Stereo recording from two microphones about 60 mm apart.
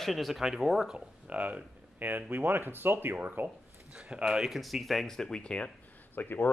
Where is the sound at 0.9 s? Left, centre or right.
Right.